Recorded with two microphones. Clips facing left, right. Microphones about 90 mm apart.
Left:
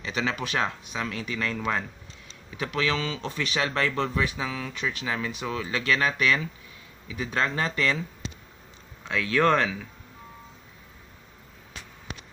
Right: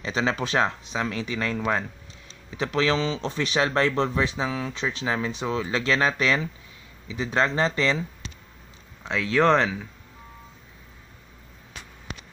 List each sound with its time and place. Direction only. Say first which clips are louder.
0.0 s speech: right 3 dB; 30° right (ahead or behind)
3.5 s speech: right 5 dB; 35° right (ahead or behind)
3.8 s speech: right 3 dB; 25° right (ahead or behind)
9.0 s speech: right 2 dB; 20° right (ahead or behind)